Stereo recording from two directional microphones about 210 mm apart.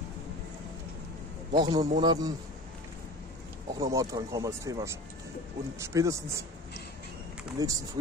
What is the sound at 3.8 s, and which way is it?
Speech, 15° right (ahead or behind).